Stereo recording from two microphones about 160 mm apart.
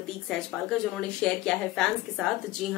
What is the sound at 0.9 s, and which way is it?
Speech, 5° left (ahead or behind).